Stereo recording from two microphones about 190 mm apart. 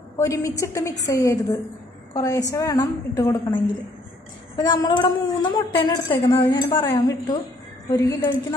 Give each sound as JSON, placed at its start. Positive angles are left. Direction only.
{"t": 0.2, "sound": "a woman's voice", "side_deg": 15}